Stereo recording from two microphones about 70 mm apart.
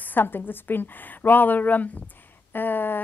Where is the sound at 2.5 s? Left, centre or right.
Left.